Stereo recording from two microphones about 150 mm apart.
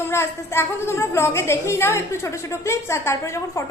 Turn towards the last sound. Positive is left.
turn(degrees=20)  # may be behind; listen again after turning